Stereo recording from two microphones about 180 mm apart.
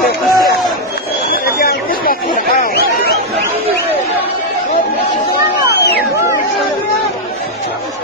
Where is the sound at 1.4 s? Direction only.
60° left (ahead or behind).